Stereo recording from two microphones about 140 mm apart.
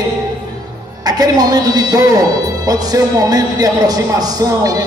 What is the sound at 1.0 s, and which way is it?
A man's voice, 30° right (ahead or behind).